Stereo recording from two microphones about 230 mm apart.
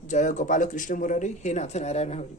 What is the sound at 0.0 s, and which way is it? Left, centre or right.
Speech, left.